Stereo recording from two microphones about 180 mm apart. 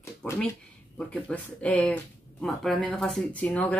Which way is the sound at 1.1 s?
10° left (ahead or behind).